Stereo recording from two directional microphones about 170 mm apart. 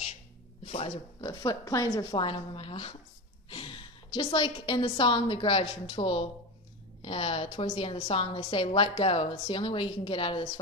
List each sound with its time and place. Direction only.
0.7 s speech: 40° left (ahead or behind)
1.2 s a woman's voice: 25° left (ahead or behind)